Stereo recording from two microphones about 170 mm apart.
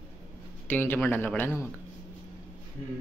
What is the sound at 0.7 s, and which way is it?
Speech, 10° left (ahead or behind).